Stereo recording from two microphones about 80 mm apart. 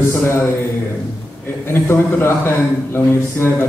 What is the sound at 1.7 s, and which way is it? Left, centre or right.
A man's voice, left.